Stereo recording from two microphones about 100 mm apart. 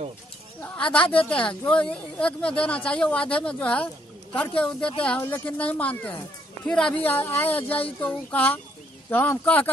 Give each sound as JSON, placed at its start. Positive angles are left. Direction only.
{"t": 0.7, "sound": "speech", "side_deg": 10}